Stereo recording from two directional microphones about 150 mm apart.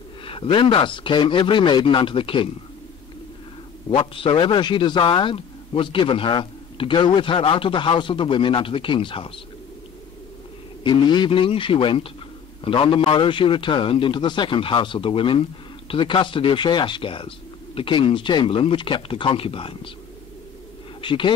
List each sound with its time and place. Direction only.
0.2 s a man's voice: 35° left (ahead or behind)
3.9 s a man's voice: 35° left (ahead or behind)
10.8 s a man's voice: 30° left (ahead or behind)
21.0 s speech: 35° left (ahead or behind)